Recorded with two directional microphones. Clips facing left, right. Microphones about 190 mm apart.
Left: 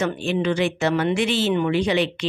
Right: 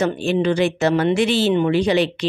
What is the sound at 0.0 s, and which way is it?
A woman's voice, 35° right (ahead or behind).